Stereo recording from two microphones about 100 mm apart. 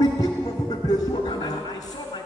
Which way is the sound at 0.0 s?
40° left (ahead or behind).